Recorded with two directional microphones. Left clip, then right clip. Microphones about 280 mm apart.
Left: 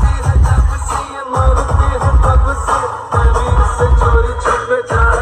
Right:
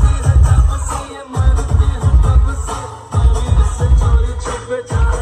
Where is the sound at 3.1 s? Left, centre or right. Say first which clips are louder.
Left 8 dB; centre.